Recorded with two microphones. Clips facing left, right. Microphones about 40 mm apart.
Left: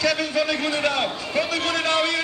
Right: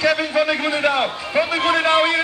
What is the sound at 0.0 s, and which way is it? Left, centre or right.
A man's voice, right.